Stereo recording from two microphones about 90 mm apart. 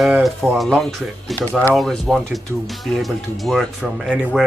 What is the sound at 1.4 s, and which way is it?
Speech, 25° left (ahead or behind).